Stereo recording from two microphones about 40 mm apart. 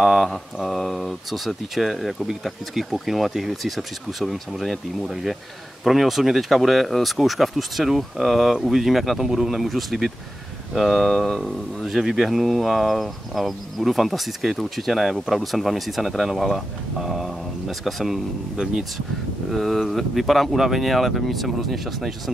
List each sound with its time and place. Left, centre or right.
0.0 s a sound: centre
0.7 s speech: centre
11.8 s speech: centre
18.6 s speech: right
19.5 s speech: centre